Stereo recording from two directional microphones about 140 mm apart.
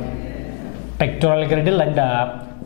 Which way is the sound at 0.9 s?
5° left (ahead or behind).